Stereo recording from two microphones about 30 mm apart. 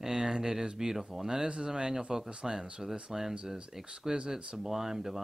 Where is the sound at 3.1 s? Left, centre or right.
Centre.